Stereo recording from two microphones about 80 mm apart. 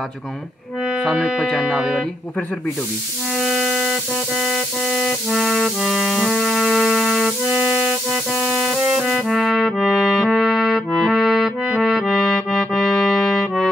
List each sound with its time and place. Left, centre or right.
1.0 s speech: centre
3.3 s a sound: centre
8.8 s music: centre